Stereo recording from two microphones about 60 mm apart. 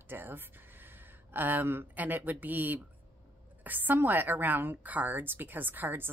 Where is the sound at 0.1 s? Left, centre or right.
Right.